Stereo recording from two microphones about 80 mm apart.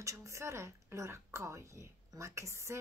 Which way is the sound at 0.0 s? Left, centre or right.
Right.